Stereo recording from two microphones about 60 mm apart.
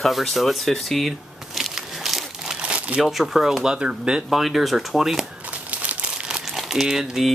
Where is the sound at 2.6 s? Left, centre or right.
Right.